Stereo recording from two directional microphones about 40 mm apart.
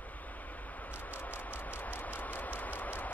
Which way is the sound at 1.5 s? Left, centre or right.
Left.